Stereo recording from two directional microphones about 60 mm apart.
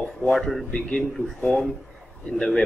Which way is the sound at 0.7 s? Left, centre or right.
Left.